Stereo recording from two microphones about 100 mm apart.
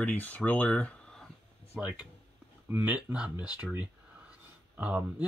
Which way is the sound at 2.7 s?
10° right (ahead or behind).